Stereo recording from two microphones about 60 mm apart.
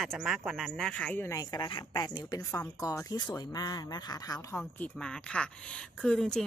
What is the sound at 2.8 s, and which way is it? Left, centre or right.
Speech, left.